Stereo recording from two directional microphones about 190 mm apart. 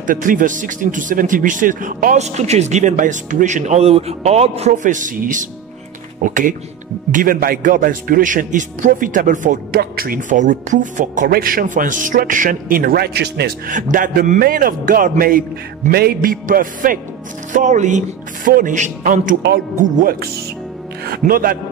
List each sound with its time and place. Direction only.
0.0 s a man's voice: 45° right (ahead or behind)